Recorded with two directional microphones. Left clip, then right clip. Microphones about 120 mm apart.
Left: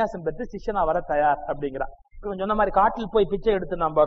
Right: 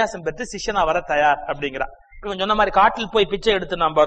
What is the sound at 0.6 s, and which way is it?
A man's voice, 40° right (ahead or behind).